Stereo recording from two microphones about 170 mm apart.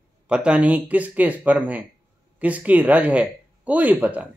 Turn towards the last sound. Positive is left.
turn(degrees=-10)  # may be behind; listen again after turning